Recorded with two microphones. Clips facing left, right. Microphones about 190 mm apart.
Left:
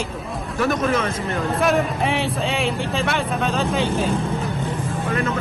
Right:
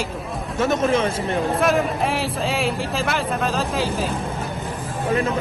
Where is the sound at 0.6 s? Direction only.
25° right (ahead or behind).